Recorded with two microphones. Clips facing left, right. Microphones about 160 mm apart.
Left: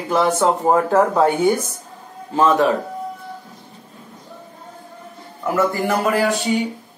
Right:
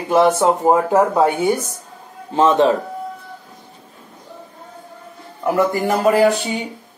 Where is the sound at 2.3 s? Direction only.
20° right (ahead or behind).